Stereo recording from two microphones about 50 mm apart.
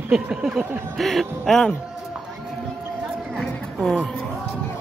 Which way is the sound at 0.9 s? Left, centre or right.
Centre.